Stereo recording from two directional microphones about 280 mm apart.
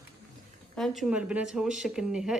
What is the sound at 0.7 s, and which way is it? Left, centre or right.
Speech, centre.